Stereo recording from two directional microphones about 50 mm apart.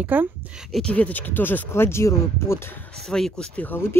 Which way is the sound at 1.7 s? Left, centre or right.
Left.